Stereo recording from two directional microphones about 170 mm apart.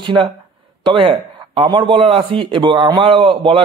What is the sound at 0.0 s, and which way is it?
A man's voice, 30° right (ahead or behind).